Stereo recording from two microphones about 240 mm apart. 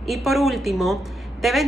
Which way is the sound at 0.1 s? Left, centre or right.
Centre.